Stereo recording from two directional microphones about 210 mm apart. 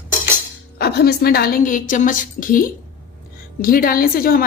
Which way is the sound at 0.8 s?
50° left (ahead or behind).